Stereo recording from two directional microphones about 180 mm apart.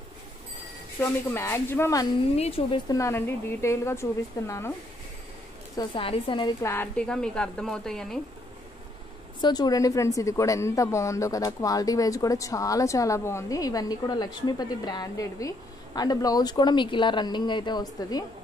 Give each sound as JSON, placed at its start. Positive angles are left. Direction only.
{"t": 1.0, "sound": "a woman's voice", "side_deg": 15}
{"t": 2.3, "sound": "speech", "side_deg": 35}
{"t": 2.9, "sound": "a woman's voice", "side_deg": 15}
{"t": 5.8, "sound": "a woman's voice", "side_deg": 30}
{"t": 6.6, "sound": "speech", "side_deg": 10}
{"t": 9.4, "sound": "a woman's voice", "side_deg": 20}